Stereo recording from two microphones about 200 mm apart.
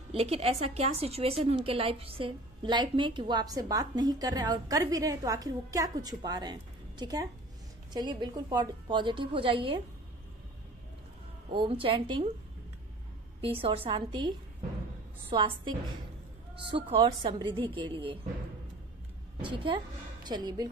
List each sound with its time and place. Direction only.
0.1 s a woman's voice: 30° right (ahead or behind)
11.5 s a woman's voice: 25° right (ahead or behind)
13.4 s a woman's voice: 25° right (ahead or behind)
19.4 s a woman's voice: 25° right (ahead or behind)